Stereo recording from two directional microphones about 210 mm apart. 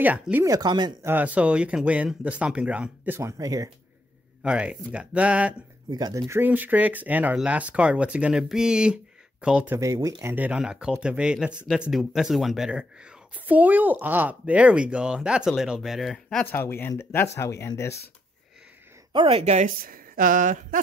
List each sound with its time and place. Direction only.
0.0 s speech: 10° right (ahead or behind)
1.1 s speech: 5° right (ahead or behind)
4.4 s speech: 5° right (ahead or behind)
5.9 s speech: 20° right (ahead or behind); by 17.9 s 15° left (ahead or behind)
19.1 s a woman's voice: 25° right (ahead or behind)